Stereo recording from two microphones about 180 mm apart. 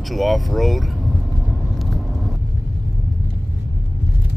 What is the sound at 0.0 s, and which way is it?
Speech, centre (ahead or behind).